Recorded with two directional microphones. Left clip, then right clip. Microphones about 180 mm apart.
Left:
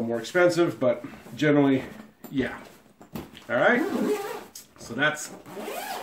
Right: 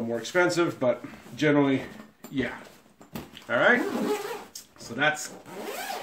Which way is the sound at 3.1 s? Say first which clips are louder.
Even; 15° right (ahead or behind).